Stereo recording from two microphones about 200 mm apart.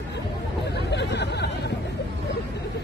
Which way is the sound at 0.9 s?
60° left (ahead or behind).